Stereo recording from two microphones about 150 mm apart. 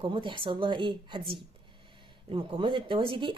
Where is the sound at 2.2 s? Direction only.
35° right (ahead or behind).